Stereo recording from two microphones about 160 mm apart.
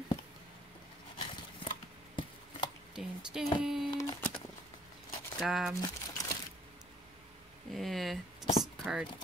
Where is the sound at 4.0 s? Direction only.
20° left (ahead or behind).